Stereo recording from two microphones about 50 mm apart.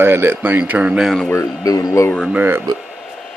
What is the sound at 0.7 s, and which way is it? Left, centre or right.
Speech, right.